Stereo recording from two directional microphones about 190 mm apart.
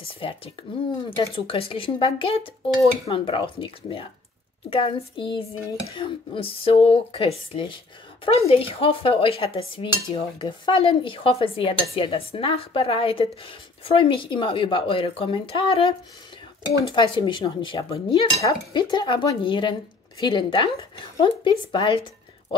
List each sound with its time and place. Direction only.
0.0 s speech: 30° left (ahead or behind)
1.1 s dishes: 25° left (ahead or behind)